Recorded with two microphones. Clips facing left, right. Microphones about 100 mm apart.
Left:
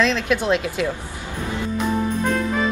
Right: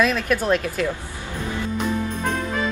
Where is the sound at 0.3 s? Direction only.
15° left (ahead or behind).